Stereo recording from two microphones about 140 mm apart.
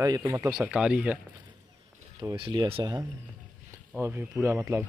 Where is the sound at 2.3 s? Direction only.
35° right (ahead or behind).